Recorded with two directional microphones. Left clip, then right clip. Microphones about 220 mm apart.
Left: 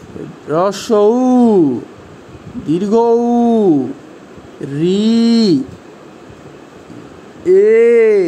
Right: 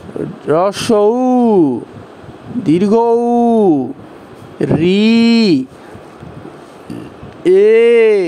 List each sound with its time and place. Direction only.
0.5 s speech: 20° right (ahead or behind)
7.4 s speech: 30° right (ahead or behind)